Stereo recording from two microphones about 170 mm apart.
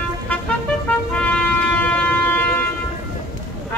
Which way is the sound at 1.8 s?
10° left (ahead or behind).